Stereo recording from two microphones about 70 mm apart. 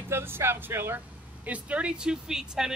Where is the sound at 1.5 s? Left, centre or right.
Centre.